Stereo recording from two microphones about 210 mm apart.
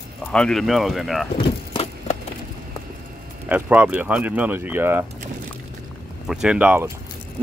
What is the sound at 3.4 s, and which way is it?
Speech, 5° right (ahead or behind).